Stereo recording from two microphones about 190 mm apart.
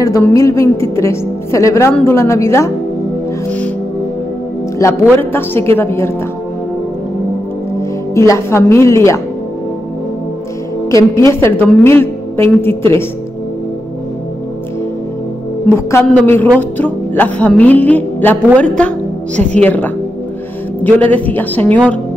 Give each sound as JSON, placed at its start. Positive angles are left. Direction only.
{"t": 0.0, "sound": "a woman's voice", "side_deg": 15}
{"t": 3.4, "sound": "music", "side_deg": 5}
{"t": 4.7, "sound": "a man's voice", "side_deg": 15}
{"t": 8.1, "sound": "a woman's voice", "side_deg": 15}
{"t": 10.9, "sound": "a woman's voice", "side_deg": 15}
{"t": 15.7, "sound": "a woman's voice", "side_deg": 10}